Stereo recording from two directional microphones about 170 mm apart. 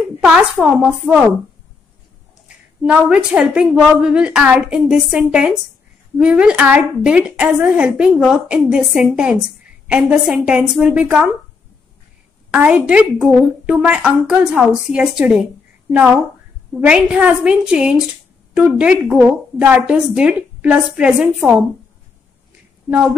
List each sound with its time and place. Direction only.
0.2 s a woman's voice: 5° right (ahead or behind)
2.4 s a woman's voice: 5° right (ahead or behind)
12.4 s a woman's voice: 5° right (ahead or behind)
16.8 s a woman's voice: 10° right (ahead or behind)